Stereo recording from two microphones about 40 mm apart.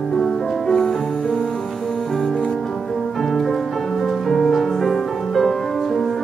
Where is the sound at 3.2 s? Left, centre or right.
Centre.